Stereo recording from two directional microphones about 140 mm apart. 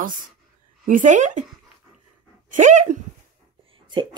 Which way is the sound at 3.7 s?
35° right (ahead or behind).